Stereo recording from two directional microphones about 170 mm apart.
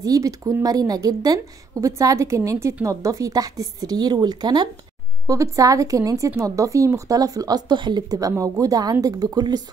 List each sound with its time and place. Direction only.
0.0 s speech: 20° right (ahead or behind)